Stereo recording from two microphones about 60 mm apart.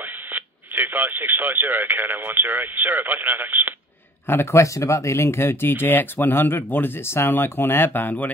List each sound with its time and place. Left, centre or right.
0.3 s speech: right
4.3 s speech: left